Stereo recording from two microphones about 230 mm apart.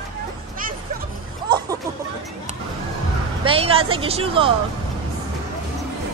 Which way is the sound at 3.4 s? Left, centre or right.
Right.